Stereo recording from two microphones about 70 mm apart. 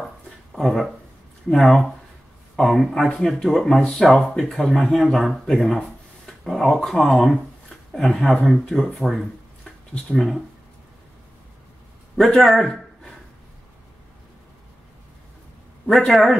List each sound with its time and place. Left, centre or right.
0.5 s speech: centre
9.7 s a sound: centre
10.1 s speech: centre
12.4 s speech: centre
16.1 s speech: centre